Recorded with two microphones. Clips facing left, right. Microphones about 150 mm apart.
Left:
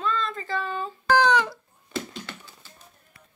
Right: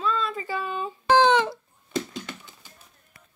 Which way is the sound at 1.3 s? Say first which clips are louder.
Right 2 dB; 25° right (ahead or behind).